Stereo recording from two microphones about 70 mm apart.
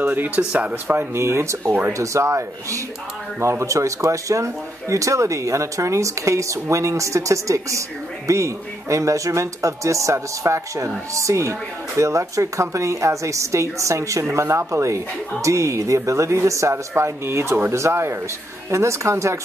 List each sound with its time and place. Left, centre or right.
0.0 s speech: right
0.4 s speech: centre
0.8 s speech: right
1.7 s speech: right
2.0 s speech: right